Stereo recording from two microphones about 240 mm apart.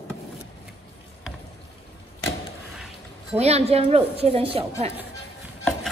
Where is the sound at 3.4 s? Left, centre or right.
Right.